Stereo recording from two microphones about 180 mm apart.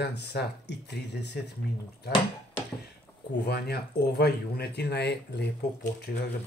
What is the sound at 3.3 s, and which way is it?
Speech, 65° left (ahead or behind).